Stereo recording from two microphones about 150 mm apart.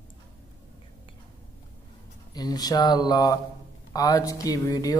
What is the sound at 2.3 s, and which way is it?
Speech, 25° left (ahead or behind).